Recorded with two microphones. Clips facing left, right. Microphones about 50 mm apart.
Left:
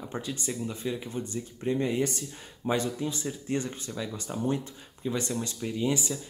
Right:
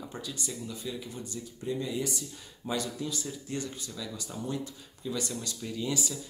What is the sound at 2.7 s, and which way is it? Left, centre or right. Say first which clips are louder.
Speech: left 4 dB; left.